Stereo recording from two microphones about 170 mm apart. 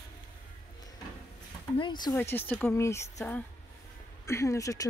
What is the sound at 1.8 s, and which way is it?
Speech, 25° left (ahead or behind).